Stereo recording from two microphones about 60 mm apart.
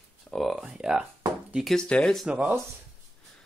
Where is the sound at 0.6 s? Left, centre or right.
Centre.